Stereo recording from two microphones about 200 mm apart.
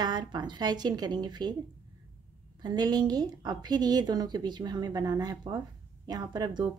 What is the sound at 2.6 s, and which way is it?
A woman's voice, 20° right (ahead or behind).